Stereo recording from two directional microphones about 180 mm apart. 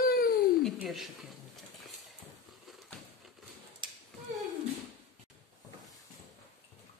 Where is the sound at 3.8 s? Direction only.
25° right (ahead or behind).